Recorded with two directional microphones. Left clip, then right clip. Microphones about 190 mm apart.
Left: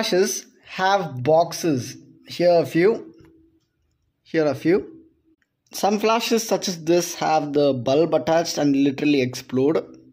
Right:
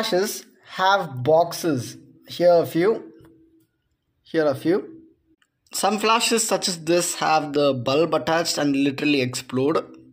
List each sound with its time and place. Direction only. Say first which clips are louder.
0.0 s speech: left 2 dB; 25° left (ahead or behind)
4.3 s speech: left 1 dB; 25° left (ahead or behind)